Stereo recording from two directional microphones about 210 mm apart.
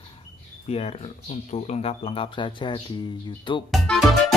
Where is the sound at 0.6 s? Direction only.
30° left (ahead or behind).